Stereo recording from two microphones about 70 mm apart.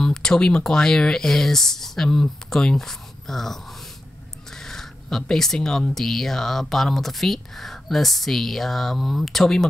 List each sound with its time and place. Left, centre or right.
0.0 s speech: centre